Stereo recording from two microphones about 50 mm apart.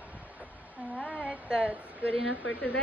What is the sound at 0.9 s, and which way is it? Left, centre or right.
Child singing, left.